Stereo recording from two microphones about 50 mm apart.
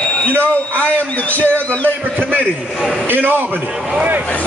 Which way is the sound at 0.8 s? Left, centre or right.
Left.